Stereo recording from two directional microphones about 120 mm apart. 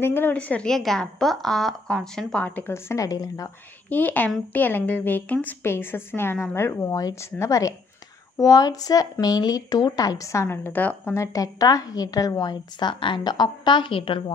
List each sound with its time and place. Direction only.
0.0 s a woman's voice: 20° left (ahead or behind)
3.9 s a woman's voice: 15° left (ahead or behind)
11.1 s a woman's voice: 30° left (ahead or behind); by 14.3 s 45° left (ahead or behind)